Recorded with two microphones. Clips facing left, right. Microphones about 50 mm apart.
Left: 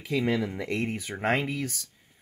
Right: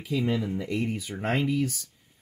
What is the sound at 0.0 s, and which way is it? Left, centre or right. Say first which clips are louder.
Speech: left 1 dB; left.